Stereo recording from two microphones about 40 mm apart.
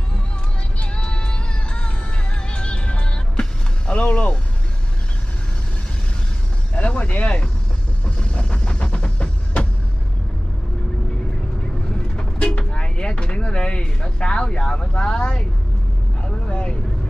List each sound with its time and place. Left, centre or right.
0.7 s music: left
6.7 s vehicle: left
8.2 s a sound: left
8.8 s music: left
12.2 s vehicle: left